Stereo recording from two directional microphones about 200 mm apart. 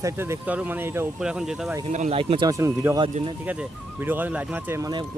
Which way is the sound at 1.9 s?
35° right (ahead or behind).